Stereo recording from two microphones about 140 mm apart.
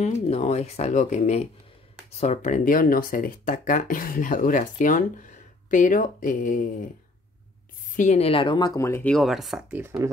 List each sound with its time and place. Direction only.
0.0 s speech: 50° left (ahead or behind); by 6.9 s 70° left (ahead or behind)
7.9 s speech: 60° left (ahead or behind); by 8.8 s 30° left (ahead or behind)
8.8 s speech: 20° left (ahead or behind)
9.1 s speech: centre (ahead or behind)
9.7 s speech: 10° right (ahead or behind)